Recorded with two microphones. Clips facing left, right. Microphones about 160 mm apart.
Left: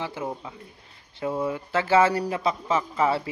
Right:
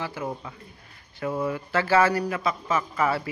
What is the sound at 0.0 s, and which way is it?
Speech, 20° left (ahead or behind).